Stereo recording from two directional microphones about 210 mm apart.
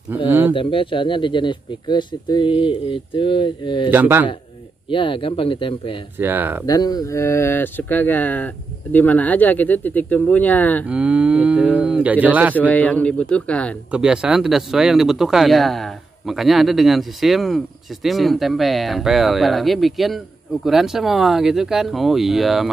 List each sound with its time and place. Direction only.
0.6 s speech: 25° left (ahead or behind)
3.9 s speech: 10° right (ahead or behind)
4.8 s speech: 25° left (ahead or behind)
6.1 s speech: 10° right (ahead or behind)
6.6 s speech: 20° left (ahead or behind)
10.9 s speech: 5° right (ahead or behind)
12.5 s speech: 5° left (ahead or behind)